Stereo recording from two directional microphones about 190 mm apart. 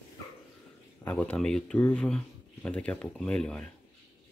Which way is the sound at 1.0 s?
10° left (ahead or behind).